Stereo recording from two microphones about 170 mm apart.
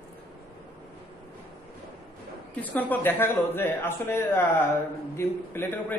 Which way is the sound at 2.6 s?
10° left (ahead or behind).